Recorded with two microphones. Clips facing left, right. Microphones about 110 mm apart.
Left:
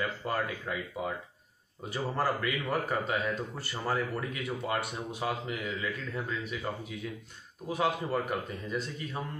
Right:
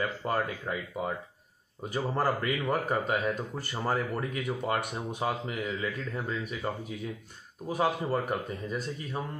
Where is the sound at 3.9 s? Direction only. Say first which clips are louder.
Right 1 dB; 45° right (ahead or behind).